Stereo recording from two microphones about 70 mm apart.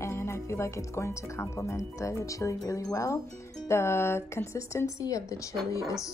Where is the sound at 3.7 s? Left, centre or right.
Left.